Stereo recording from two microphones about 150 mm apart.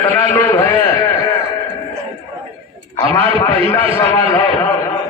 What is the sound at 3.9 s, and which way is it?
Speech, 10° left (ahead or behind).